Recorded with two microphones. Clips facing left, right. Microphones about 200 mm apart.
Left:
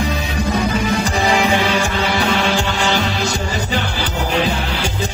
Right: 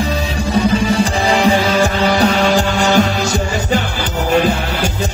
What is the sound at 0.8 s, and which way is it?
Music, 30° right (ahead or behind).